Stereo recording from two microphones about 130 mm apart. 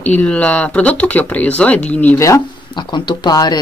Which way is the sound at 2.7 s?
35° left (ahead or behind).